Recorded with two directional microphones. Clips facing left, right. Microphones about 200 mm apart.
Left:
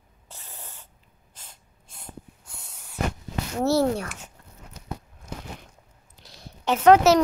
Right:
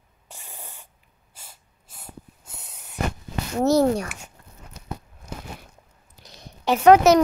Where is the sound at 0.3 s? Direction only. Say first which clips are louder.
Right 2 dB; 15° right (ahead or behind).